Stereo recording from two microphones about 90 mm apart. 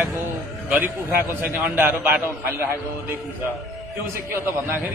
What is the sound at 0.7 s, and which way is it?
A man's voice, 20° right (ahead or behind).